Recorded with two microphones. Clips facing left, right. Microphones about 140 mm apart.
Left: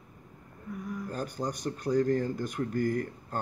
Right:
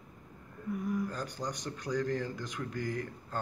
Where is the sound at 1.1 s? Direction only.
50° left (ahead or behind).